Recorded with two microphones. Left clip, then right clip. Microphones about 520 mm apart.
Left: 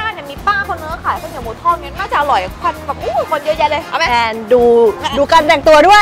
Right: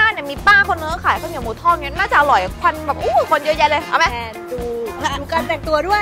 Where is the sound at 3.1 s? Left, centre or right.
Right.